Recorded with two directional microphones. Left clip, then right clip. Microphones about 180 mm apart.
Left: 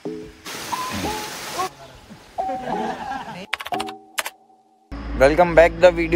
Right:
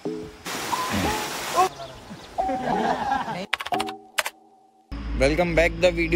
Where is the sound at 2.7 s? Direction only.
15° right (ahead or behind).